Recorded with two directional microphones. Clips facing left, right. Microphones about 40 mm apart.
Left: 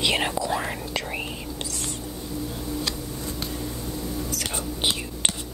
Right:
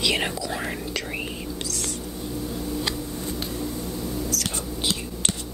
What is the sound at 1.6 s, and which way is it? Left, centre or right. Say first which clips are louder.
Whispering: even; centre.